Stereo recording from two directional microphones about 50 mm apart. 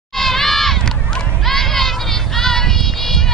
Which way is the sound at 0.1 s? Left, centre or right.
Centre.